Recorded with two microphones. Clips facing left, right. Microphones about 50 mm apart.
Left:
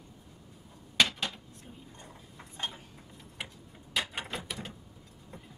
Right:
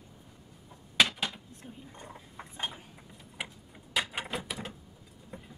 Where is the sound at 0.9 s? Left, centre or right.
Centre.